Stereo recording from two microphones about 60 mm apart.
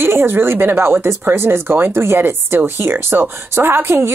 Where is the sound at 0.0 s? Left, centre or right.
Right.